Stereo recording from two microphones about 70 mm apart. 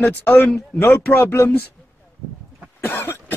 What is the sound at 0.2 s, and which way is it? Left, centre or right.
Speech, left.